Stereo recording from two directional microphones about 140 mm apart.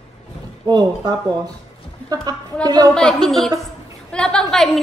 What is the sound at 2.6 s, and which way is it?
Speech, 30° right (ahead or behind).